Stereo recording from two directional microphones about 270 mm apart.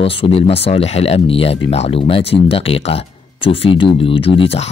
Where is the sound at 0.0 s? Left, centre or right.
Left.